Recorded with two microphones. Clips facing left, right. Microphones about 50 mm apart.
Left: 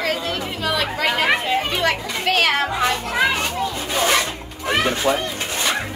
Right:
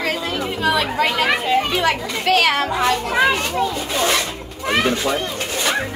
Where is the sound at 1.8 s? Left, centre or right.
Centre.